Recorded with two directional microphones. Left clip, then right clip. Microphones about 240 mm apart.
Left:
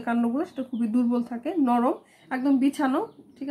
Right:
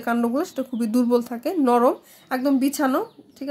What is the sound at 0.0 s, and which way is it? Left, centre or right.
A woman's voice, right.